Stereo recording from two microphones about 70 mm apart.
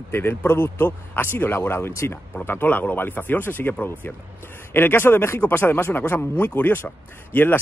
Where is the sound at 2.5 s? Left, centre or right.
Left.